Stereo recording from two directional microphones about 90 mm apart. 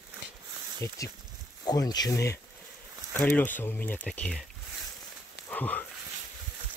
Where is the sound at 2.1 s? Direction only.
30° left (ahead or behind); by 4.4 s 15° left (ahead or behind).